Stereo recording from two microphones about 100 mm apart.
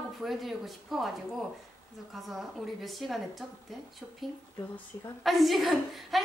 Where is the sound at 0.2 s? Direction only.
Centre (ahead or behind).